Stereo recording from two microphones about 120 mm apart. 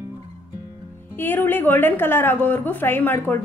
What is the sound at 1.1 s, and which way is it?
A woman's voice, 20° left (ahead or behind).